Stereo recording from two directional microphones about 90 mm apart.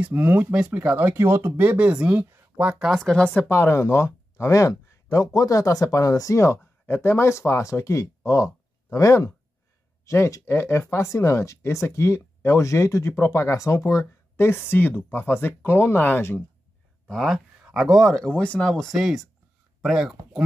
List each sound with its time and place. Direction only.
0.0 s speech: 20° right (ahead or behind)
1.6 s speech: 15° right (ahead or behind)
2.3 s a sound: 25° right (ahead or behind)
2.9 s speech: 5° left (ahead or behind)
3.3 s speech: 25° left (ahead or behind)
17.1 s speech: centre (ahead or behind)